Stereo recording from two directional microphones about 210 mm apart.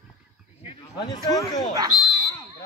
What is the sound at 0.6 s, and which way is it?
A man's voice, 25° left (ahead or behind).